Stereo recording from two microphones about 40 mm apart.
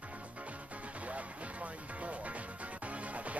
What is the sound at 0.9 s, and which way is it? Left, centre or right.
Music, right.